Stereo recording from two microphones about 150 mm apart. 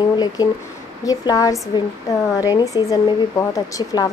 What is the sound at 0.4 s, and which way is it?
Speech, 25° left (ahead or behind).